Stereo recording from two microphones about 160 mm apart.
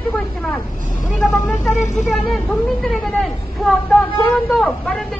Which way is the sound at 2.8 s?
Centre (ahead or behind).